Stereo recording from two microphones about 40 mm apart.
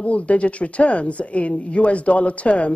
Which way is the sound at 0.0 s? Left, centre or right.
Left.